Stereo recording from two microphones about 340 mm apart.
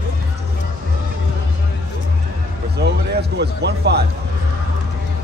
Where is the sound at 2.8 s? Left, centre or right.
Right.